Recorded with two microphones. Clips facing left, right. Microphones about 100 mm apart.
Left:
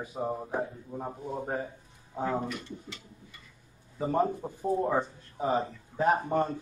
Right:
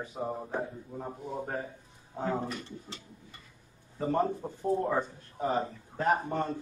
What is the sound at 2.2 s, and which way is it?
Speech, 35° right (ahead or behind).